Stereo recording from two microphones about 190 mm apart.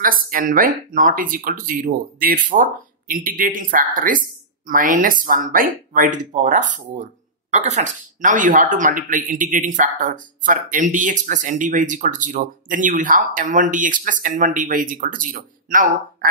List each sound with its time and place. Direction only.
0.0 s speech: 45° right (ahead or behind)